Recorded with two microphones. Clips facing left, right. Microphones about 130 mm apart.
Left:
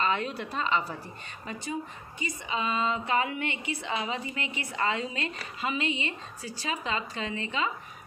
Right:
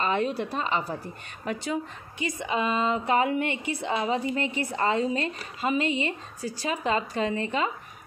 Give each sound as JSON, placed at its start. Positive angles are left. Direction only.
{"t": 0.0, "sound": "a woman's voice", "side_deg": -40}
{"t": 1.4, "sound": "a woman's voice", "side_deg": -75}